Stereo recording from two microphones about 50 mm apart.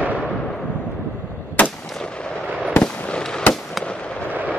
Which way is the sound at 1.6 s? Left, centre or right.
Left.